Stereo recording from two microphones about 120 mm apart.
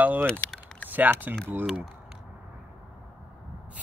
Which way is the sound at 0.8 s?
15° right (ahead or behind).